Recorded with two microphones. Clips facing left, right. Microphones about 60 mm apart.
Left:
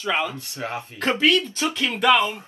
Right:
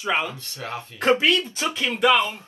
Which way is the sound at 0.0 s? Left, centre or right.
Centre.